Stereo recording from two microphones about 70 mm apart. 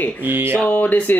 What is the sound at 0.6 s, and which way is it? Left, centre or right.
Speech, left.